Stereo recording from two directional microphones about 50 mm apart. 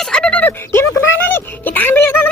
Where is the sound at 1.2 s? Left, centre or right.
Left.